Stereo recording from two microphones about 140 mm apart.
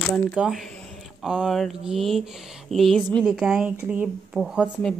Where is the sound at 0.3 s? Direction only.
5° right (ahead or behind).